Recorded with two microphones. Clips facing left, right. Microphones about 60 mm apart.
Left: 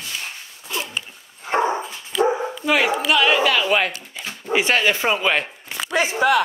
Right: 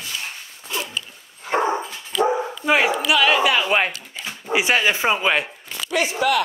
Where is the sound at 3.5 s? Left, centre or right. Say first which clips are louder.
Even; centre.